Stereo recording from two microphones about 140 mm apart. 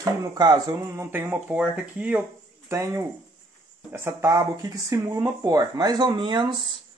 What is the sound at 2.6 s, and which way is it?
Speech, 20° right (ahead or behind).